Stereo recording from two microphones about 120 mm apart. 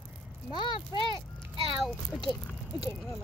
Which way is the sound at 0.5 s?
40° left (ahead or behind).